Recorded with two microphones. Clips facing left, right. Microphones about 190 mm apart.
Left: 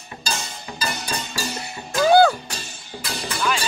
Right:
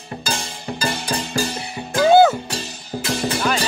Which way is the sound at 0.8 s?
30° right (ahead or behind).